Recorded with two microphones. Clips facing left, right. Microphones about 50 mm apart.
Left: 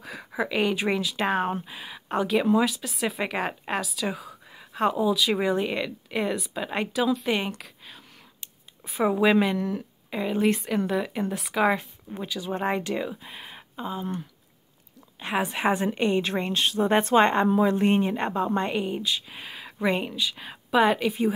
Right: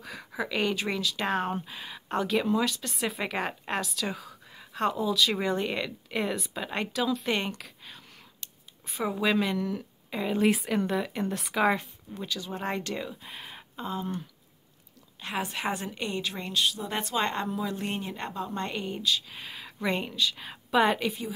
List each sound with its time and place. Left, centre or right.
0.0 s a sound: centre
0.7 s speech: centre
9.0 s speech: centre
12.2 s speech: centre
15.1 s a woman's voice: centre
18.6 s speech: centre